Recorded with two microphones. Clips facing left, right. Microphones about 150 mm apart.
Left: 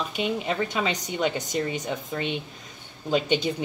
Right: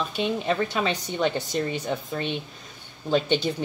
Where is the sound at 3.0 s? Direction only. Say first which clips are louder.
Right 1 dB; 15° left (ahead or behind).